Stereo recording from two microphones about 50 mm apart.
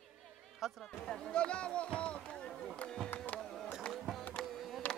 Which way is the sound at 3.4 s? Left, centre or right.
Centre.